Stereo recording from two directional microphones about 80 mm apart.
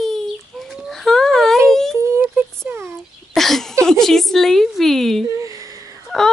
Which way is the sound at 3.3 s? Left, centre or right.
Centre.